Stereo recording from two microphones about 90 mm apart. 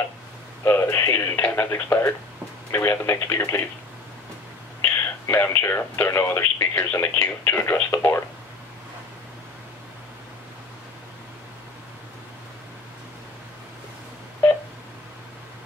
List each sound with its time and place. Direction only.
0.7 s speech: 30° left (ahead or behind)
4.8 s speech: 30° left (ahead or behind)